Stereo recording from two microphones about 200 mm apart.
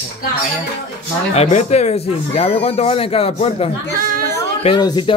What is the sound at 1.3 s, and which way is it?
A man's voice, 30° left (ahead or behind).